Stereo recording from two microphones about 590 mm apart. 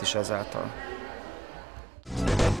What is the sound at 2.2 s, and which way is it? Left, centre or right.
Music, centre.